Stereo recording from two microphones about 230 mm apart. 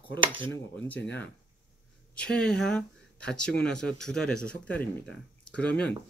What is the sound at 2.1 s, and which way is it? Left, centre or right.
Speech, centre.